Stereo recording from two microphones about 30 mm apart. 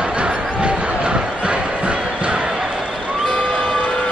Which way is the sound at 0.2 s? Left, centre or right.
Right.